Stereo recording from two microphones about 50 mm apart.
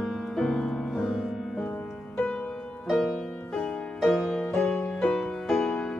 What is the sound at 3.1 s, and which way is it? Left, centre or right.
Music, left.